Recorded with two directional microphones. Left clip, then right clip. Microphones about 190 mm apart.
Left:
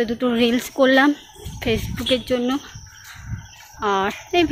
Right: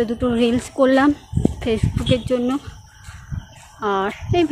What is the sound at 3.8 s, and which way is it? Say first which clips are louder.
Speech: even; centre (ahead or behind).